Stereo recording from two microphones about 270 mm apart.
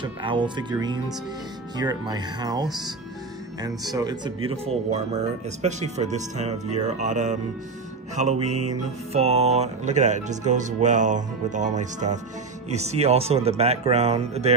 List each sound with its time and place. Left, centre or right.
0.0 s speech: centre